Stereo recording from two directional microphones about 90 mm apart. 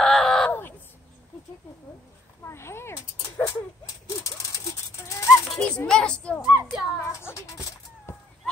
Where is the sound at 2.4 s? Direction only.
30° left (ahead or behind).